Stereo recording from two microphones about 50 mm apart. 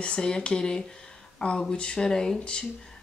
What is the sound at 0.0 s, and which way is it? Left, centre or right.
Speech, centre.